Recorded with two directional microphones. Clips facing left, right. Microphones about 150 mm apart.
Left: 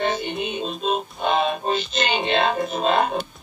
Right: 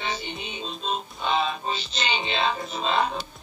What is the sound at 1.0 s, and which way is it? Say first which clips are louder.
Music: left 2 dB; 50° left (ahead or behind).